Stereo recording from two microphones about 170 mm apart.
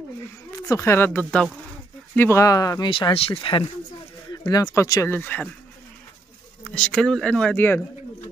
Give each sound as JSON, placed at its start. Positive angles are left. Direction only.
{"t": 0.5, "sound": "speech", "side_deg": 20}
{"t": 6.7, "sound": "speech", "side_deg": 5}